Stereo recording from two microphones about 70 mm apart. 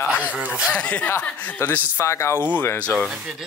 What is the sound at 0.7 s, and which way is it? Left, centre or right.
Speech, centre.